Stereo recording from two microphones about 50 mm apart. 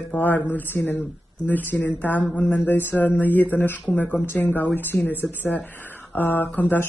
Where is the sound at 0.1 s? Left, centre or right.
Left.